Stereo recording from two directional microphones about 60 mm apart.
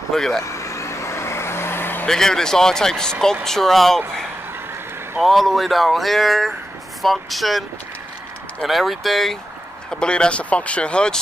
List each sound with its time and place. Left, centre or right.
0.1 s speech: centre
0.4 s vehicle: left
2.0 s speech: centre
5.2 s speech: centre
8.6 s speech: centre
9.8 s speech: centre